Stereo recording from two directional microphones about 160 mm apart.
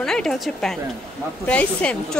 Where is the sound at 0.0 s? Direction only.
5° left (ahead or behind).